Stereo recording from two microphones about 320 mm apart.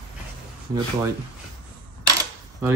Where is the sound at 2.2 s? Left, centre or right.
Centre.